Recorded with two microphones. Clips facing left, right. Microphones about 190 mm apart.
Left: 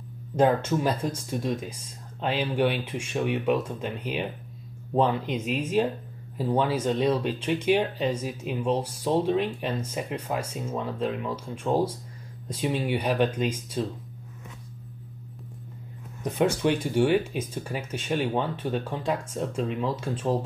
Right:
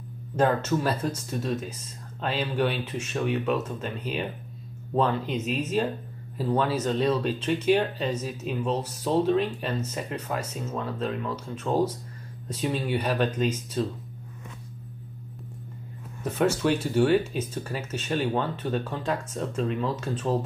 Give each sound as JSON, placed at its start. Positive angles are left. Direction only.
{"t": 0.4, "sound": "speech", "side_deg": 10}
{"t": 16.2, "sound": "speech", "side_deg": 15}